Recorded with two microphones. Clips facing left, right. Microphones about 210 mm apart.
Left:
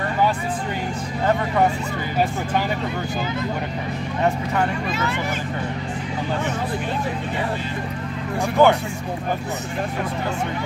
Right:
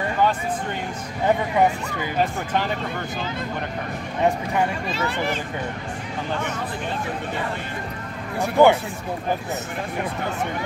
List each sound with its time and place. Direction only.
8.4 s speech: 15° right (ahead or behind)